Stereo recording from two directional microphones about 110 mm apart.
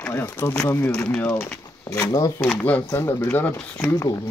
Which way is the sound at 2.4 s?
10° left (ahead or behind).